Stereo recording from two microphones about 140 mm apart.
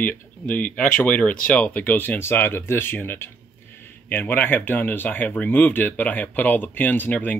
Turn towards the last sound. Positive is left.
turn(degrees=10)  # may be behind; listen again after turning